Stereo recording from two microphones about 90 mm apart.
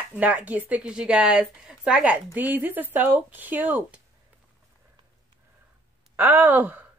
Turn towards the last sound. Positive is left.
turn(degrees=-20)  # may be behind; listen again after turning